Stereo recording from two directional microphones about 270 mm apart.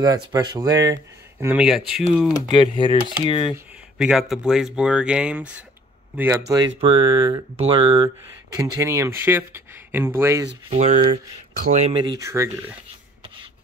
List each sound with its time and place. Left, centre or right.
0.0 s speech: centre
2.3 s speech: centre
3.5 s speech: centre
10.7 s speech: right